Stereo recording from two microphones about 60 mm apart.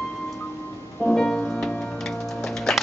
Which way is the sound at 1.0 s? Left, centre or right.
Centre.